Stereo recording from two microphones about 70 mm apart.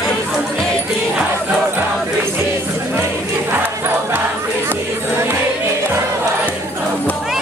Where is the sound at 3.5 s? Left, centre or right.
Right.